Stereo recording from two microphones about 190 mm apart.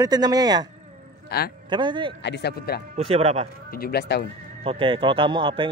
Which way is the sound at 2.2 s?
60° left (ahead or behind).